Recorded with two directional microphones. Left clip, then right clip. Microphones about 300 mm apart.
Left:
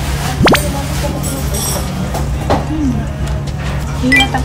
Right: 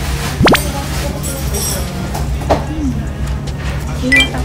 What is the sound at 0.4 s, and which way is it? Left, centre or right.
Music, centre.